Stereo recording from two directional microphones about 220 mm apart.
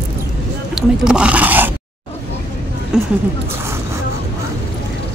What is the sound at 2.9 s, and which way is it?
Speech, 5° right (ahead or behind).